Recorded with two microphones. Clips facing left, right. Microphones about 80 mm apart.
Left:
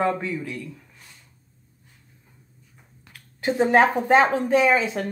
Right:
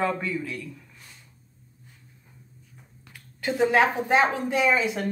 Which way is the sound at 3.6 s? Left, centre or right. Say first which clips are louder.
Left 3 dB; left.